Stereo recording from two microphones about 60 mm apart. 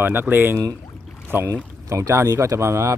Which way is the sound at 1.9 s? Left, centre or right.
Right.